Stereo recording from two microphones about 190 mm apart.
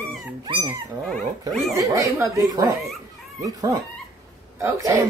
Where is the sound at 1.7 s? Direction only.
15° right (ahead or behind).